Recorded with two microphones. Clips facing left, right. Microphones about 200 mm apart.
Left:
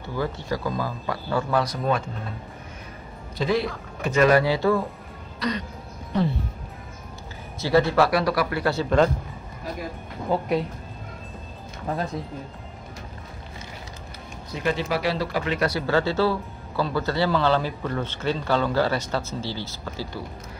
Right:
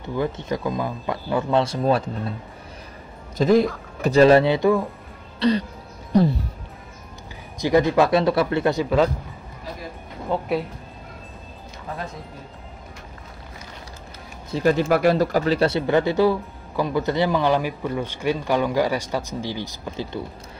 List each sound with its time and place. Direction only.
0.0 s speech: 20° right (ahead or behind); by 2.3 s 35° right (ahead or behind)
3.3 s speech: 45° right (ahead or behind)
4.0 s speech: 35° right (ahead or behind); by 4.8 s 15° right (ahead or behind)
5.4 s speech: 30° right (ahead or behind)
6.1 s speech: 40° right (ahead or behind)
7.5 s speech: 15° right (ahead or behind)
10.3 s speech: centre (ahead or behind)
14.5 s speech: 40° right (ahead or behind); by 20.2 s 20° right (ahead or behind)